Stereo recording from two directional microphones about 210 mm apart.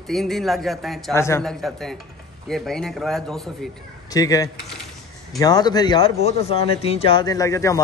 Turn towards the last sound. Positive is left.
turn(degrees=15)  # may be behind; listen again after turning